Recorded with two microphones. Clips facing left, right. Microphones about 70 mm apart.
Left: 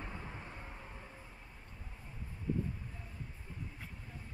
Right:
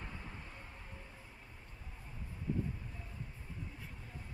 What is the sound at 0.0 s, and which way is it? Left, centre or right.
Vehicle, centre.